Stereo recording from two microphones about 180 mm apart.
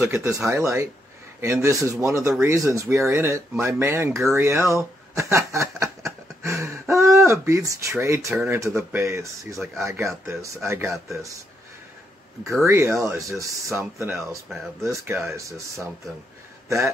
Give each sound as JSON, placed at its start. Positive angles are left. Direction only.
{"t": 0.0, "sound": "speech", "side_deg": -15}
{"t": 4.3, "sound": "snicker", "side_deg": -15}
{"t": 8.7, "sound": "speech", "side_deg": -15}
{"t": 12.6, "sound": "speech", "side_deg": -15}
{"t": 16.6, "sound": "speech", "side_deg": -15}